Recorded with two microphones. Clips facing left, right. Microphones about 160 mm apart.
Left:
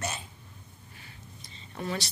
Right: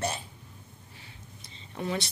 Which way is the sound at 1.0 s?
25° right (ahead or behind).